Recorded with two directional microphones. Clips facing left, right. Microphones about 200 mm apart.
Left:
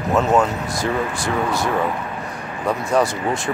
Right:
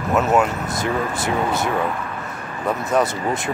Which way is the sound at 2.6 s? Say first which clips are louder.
Left 1 dB; centre (ahead or behind).